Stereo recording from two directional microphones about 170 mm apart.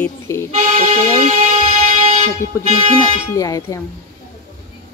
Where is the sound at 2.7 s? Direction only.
40° right (ahead or behind).